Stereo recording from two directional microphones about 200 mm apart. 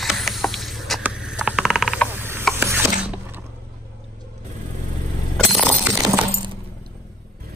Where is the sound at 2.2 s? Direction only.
10° right (ahead or behind).